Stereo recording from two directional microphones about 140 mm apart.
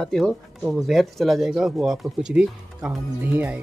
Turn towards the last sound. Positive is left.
turn(degrees=-10)  # may be behind; listen again after turning